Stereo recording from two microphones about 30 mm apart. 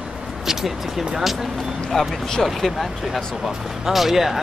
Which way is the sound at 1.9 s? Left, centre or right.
Centre.